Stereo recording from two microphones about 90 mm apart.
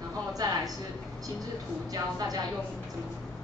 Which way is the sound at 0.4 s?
50° right (ahead or behind).